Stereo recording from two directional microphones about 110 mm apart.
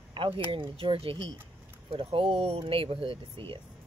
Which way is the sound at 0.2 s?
50° right (ahead or behind).